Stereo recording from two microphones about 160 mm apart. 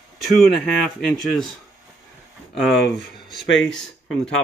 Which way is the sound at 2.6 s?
Centre (ahead or behind).